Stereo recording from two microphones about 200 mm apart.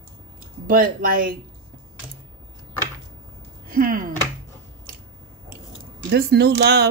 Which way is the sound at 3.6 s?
45° right (ahead or behind).